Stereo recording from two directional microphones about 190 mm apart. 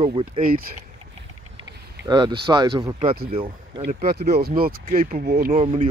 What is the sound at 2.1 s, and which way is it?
Speech, 25° right (ahead or behind).